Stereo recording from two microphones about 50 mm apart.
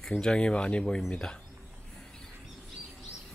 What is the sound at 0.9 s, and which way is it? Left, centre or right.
Speech, centre.